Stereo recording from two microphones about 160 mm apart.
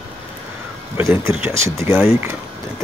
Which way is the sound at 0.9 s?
15° right (ahead or behind).